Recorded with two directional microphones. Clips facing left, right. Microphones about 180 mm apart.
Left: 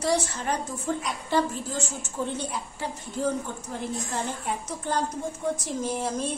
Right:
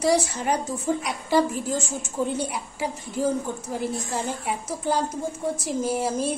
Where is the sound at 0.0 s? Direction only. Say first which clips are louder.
Right 4 dB; 10° right (ahead or behind).